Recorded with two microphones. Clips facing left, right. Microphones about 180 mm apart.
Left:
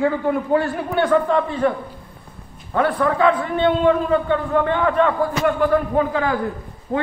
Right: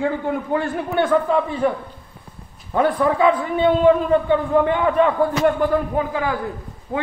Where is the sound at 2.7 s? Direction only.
10° right (ahead or behind).